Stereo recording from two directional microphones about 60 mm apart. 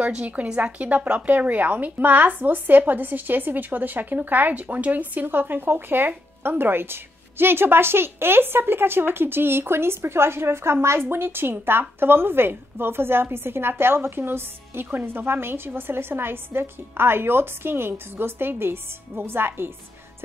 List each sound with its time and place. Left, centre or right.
0.0 s a woman's voice: right